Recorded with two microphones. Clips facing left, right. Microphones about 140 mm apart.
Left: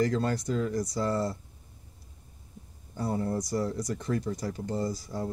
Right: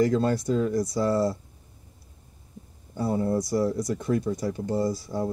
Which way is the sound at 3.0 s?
30° right (ahead or behind).